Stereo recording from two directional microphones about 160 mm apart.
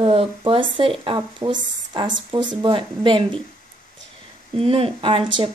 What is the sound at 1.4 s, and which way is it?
Speech, 25° right (ahead or behind).